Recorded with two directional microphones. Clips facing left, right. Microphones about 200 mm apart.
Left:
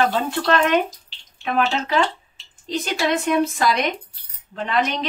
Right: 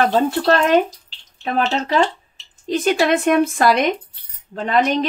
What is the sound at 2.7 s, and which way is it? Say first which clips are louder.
A woman's voice: right 5 dB; 50° right (ahead or behind).